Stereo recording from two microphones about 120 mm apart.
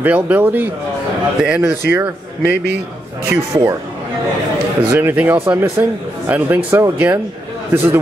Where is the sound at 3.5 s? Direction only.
35° right (ahead or behind).